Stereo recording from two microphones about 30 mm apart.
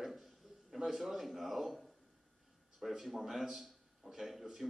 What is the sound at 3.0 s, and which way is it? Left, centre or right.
Speech, centre.